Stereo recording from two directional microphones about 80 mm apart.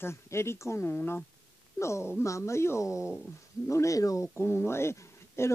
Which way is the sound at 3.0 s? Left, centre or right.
Centre.